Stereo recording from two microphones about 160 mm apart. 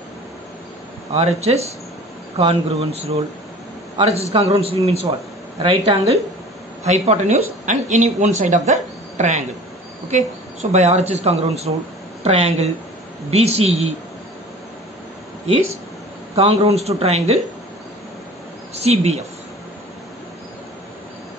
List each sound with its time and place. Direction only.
1.1 s a man's voice: 40° right (ahead or behind)
16.3 s speech: 40° right (ahead or behind)
18.8 s speech: 40° right (ahead or behind)